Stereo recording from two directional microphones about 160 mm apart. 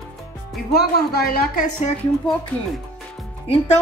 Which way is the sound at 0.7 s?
75° left (ahead or behind).